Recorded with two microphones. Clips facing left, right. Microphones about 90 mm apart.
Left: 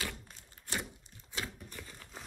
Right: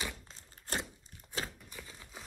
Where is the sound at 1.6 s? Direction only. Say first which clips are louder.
Left 1 dB; 10° right (ahead or behind).